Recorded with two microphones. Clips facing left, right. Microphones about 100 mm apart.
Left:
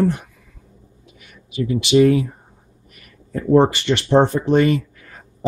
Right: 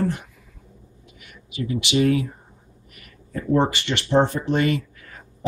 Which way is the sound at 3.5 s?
30° left (ahead or behind).